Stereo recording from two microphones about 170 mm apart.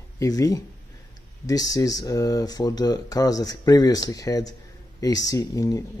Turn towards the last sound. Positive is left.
turn(degrees=20)  # may be behind; listen again after turning